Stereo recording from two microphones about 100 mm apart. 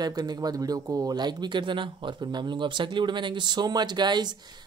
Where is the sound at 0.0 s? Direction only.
40° right (ahead or behind).